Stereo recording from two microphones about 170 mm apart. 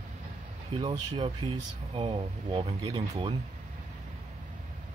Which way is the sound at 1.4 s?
30° right (ahead or behind).